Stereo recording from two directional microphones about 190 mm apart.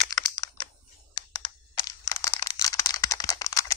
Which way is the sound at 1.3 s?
20° left (ahead or behind).